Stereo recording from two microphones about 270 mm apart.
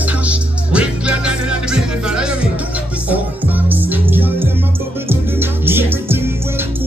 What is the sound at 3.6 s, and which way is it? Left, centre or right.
Music, centre.